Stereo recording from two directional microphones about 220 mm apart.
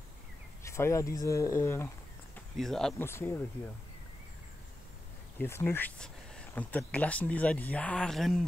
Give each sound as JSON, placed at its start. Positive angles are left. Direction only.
{"t": 0.7, "sound": "speech", "side_deg": 10}
{"t": 2.3, "sound": "speech", "side_deg": 0}
{"t": 5.4, "sound": "speech", "side_deg": 10}